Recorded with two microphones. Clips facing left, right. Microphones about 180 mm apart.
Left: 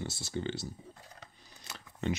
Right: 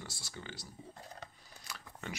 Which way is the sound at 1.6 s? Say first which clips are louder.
Left 10 dB; 25° left (ahead or behind).